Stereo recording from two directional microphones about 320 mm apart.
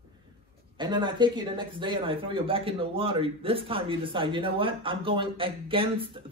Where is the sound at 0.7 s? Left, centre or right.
Centre.